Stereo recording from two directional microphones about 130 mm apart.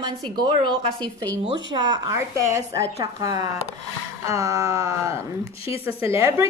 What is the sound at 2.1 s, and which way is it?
Speech, 20° right (ahead or behind).